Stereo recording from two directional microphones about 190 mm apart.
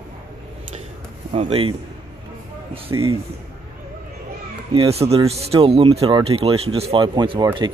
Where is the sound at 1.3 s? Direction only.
30° right (ahead or behind).